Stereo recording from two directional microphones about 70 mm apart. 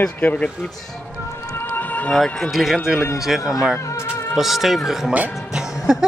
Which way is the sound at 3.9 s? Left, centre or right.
Left.